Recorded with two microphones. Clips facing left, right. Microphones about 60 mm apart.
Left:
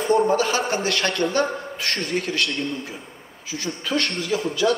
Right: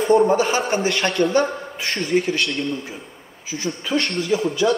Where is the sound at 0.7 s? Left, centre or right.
Centre.